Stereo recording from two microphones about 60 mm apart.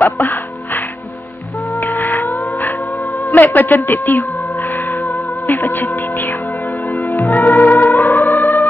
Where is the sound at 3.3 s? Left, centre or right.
Left.